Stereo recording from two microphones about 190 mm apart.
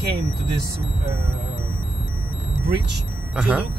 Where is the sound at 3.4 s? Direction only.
5° right (ahead or behind).